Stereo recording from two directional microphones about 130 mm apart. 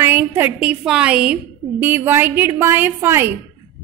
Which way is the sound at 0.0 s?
15° right (ahead or behind).